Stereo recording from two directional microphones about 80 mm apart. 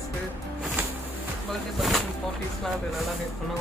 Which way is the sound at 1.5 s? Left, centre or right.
Centre.